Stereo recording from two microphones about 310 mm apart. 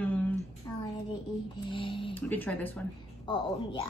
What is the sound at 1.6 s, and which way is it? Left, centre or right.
Speech, centre.